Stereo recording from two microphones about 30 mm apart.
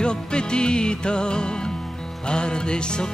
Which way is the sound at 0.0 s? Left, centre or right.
Left.